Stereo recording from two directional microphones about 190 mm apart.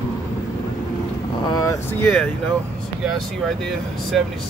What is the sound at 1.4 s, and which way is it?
Speech, 20° left (ahead or behind).